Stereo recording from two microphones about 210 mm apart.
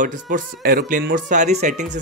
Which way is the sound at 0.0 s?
40° right (ahead or behind).